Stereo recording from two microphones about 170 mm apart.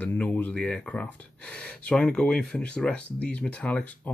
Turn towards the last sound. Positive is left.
turn(degrees=10)  # may be behind; listen again after turning